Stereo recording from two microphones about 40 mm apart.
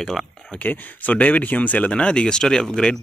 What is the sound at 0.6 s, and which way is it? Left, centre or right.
Speech, left.